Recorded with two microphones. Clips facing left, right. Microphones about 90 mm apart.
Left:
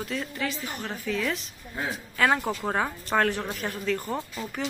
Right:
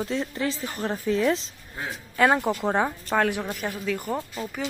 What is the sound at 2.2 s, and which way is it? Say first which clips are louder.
A woman's voice: right 4 dB; 15° right (ahead or behind).